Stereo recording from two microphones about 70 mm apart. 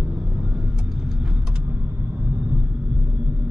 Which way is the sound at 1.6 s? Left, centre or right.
Right.